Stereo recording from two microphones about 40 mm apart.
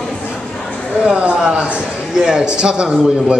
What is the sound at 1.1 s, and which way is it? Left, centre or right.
A man's voice, right.